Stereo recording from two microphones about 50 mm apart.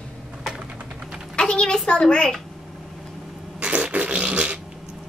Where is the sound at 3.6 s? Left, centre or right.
Right.